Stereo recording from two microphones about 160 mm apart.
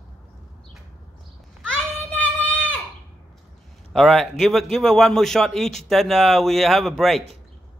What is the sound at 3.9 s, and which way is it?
A man's voice, centre (ahead or behind).